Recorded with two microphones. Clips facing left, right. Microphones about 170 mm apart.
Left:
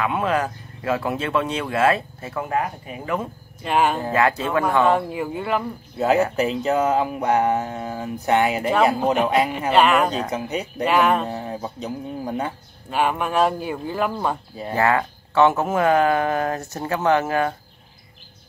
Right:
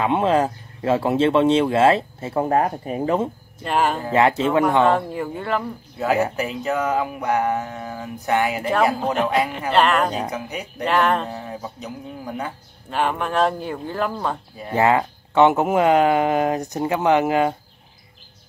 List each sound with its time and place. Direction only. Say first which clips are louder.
0.0 s speech: right 4 dB; 25° right (ahead or behind)
3.6 s speech: left 1 dB; 5° left (ahead or behind)
4.1 s speech: right 3 dB; 25° right (ahead or behind)
4.8 s speech: even; 5° left (ahead or behind)
6.3 s speech: left 3 dB; 25° left (ahead or behind)
9.0 s speech: left 2 dB; 5° left (ahead or behind)
9.3 s speech: left 1 dB; 25° left (ahead or behind)
9.7 s speech: left 1 dB; 5° left (ahead or behind)
10.3 s speech: left 3 dB; 25° left (ahead or behind)
10.8 s speech: left 1 dB; 5° left (ahead or behind)
11.3 s speech: left 3 dB; 25° left (ahead or behind)
12.9 s speech: left 1 dB; 5° left (ahead or behind)
14.7 s speech: right 2 dB; 20° right (ahead or behind)